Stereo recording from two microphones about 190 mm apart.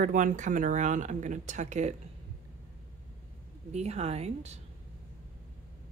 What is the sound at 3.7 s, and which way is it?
Speech, 35° right (ahead or behind).